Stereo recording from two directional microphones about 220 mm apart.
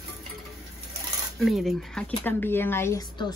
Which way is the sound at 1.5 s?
Centre (ahead or behind).